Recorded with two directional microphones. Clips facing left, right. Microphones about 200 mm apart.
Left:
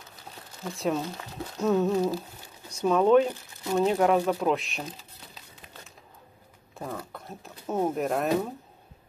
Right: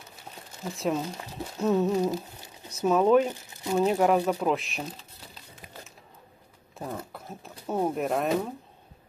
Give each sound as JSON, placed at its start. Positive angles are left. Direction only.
{"t": 0.7, "sound": "speech", "side_deg": 0}
{"t": 2.0, "sound": "a sound", "side_deg": -15}
{"t": 2.8, "sound": "speech", "side_deg": -5}
{"t": 7.1, "sound": "speech", "side_deg": 0}